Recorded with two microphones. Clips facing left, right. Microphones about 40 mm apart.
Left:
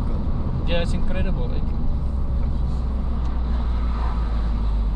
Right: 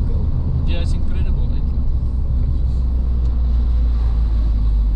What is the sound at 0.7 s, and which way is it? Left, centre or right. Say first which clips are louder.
Speech: left 3 dB; left.